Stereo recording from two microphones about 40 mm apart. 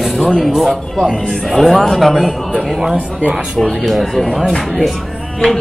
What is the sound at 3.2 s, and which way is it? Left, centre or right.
Speech, right.